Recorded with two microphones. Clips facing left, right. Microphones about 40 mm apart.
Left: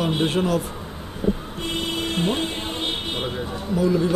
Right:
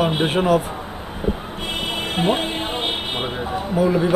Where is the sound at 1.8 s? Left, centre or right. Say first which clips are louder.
Right 2 dB; right.